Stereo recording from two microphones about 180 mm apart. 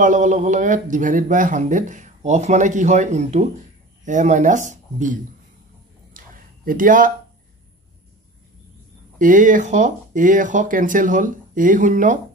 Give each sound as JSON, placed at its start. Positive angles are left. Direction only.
{"t": 0.0, "sound": "speech", "side_deg": -45}
{"t": 6.1, "sound": "a sound", "side_deg": -50}
{"t": 9.2, "sound": "speech", "side_deg": -45}